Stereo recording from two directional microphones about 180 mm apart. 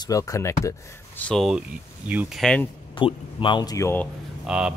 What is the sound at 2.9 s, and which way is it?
Speech, 30° left (ahead or behind).